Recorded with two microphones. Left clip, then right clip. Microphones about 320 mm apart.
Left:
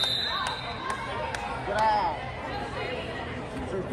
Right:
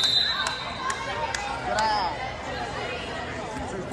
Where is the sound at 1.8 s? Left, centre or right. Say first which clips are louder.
Left 2 dB; centre.